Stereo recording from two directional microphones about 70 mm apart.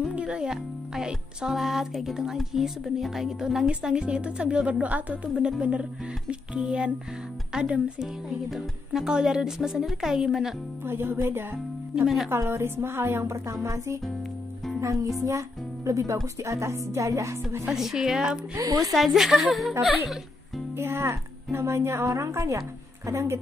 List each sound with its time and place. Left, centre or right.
0.1 s speech: centre
8.5 s speech: centre
10.9 s a woman's voice: right
11.9 s a woman's voice: centre
12.3 s a woman's voice: right
17.6 s speech: centre
18.6 s a woman's voice: right
18.9 s a woman's voice: centre
20.7 s a woman's voice: right